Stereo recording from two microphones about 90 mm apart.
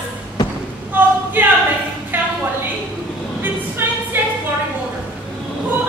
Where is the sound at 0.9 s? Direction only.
20° right (ahead or behind).